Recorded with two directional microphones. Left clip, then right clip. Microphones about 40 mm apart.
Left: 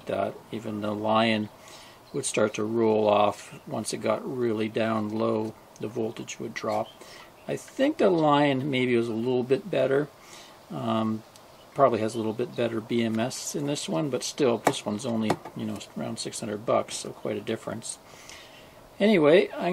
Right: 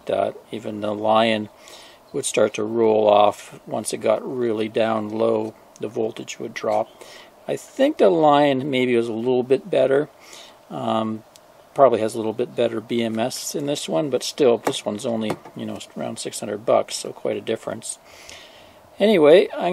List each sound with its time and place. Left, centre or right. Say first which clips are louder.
0.0 s speech: right 7 dB; right